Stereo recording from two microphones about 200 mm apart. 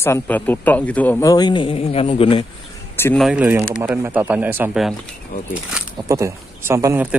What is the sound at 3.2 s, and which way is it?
Speech, 5° right (ahead or behind).